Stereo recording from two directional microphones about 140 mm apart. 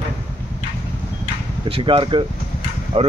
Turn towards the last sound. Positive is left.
turn(degrees=-45)  # may be behind; listen again after turning